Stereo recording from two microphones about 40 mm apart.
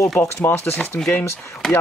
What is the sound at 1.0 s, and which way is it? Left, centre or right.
Speech, centre.